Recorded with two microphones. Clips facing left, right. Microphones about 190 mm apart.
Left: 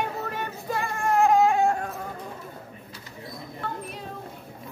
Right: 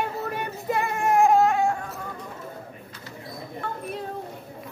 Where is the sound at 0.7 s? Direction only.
20° right (ahead or behind).